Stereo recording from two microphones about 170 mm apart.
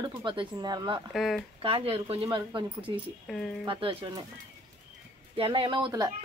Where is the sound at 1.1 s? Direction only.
Centre (ahead or behind).